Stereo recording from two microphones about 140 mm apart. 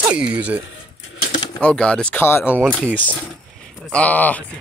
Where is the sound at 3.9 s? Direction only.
10° left (ahead or behind).